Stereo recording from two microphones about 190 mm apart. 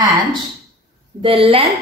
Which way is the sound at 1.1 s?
30° right (ahead or behind).